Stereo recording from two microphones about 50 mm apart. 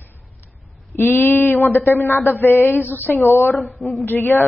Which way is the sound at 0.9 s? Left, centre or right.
Left.